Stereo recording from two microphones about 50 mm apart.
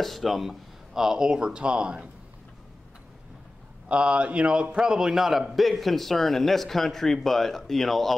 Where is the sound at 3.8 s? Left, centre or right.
Right; by 8.1 s centre.